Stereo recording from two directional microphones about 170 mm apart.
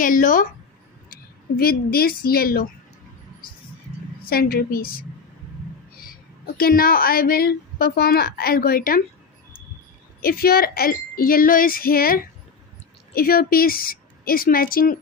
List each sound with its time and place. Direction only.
0.0 s a woman's voice: 50° left (ahead or behind)
4.2 s a woman's voice: 60° left (ahead or behind)
10.2 s a woman's voice: 60° left (ahead or behind)